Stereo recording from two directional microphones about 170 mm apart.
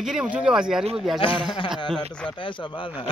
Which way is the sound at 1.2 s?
30° left (ahead or behind).